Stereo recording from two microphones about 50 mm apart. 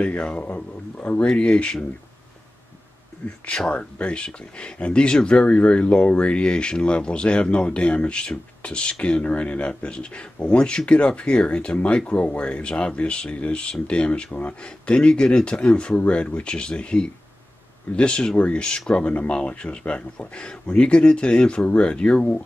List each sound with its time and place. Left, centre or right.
0.2 s speech: left
3.4 s speech: centre